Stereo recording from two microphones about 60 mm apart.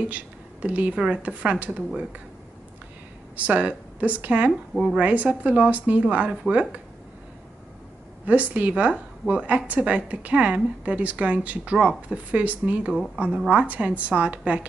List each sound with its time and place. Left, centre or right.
0.1 s a woman's voice: right
3.3 s a woman's voice: right
4.5 s speech: centre
4.9 s a woman's voice: right
8.3 s a woman's voice: right